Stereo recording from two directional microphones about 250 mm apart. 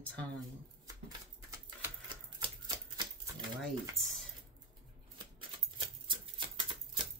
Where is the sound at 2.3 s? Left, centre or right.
Centre.